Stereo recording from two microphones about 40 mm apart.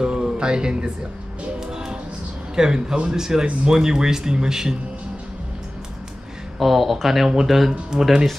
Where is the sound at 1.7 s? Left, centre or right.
Centre.